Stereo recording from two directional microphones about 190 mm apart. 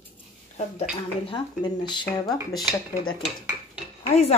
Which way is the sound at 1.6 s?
25° left (ahead or behind).